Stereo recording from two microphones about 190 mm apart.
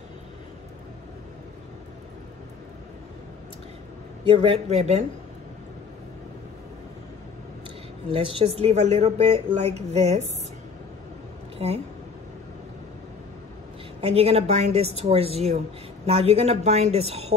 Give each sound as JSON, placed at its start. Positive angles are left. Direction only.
{"t": 4.2, "sound": "speech", "side_deg": -30}
{"t": 8.1, "sound": "speech", "side_deg": -30}
{"t": 11.5, "sound": "a sound", "side_deg": -30}
{"t": 14.0, "sound": "speech", "side_deg": -30}